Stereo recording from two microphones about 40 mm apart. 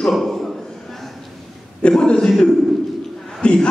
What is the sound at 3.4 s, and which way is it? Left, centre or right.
Speech, left.